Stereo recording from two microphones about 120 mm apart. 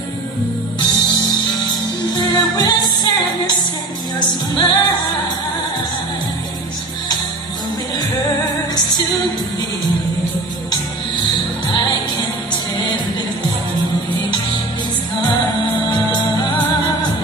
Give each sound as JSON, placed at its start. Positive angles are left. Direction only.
{"t": 0.7, "sound": "music", "side_deg": 35}
{"t": 8.7, "sound": "music", "side_deg": 35}